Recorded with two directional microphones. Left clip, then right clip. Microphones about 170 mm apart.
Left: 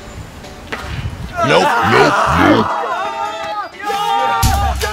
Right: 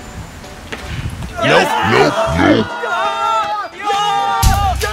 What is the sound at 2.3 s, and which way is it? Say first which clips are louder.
Music: left 2 dB; centre (ahead or behind).